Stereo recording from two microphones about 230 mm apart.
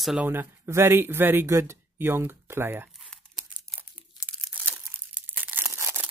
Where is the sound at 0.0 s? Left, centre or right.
Centre.